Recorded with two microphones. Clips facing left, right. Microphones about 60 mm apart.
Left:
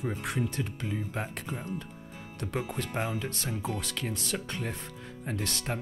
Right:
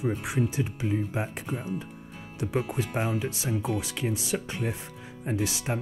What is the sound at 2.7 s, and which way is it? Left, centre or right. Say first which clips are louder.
Speech: right 4 dB; centre.